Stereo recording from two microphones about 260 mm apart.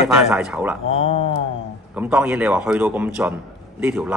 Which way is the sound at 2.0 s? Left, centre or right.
Centre.